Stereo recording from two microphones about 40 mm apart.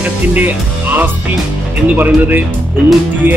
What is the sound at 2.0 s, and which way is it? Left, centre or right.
Speech, right.